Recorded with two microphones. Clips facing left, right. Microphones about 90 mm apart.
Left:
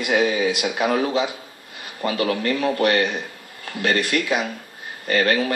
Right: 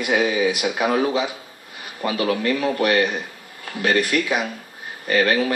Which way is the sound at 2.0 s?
20° right (ahead or behind).